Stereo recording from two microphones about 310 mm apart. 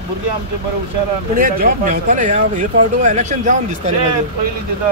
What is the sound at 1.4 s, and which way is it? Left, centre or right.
Speech, right.